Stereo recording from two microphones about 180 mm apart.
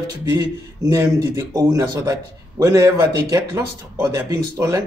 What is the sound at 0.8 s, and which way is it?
Speech, 15° right (ahead or behind).